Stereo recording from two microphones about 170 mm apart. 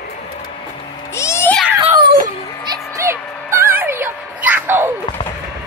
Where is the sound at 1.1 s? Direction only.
15° left (ahead or behind).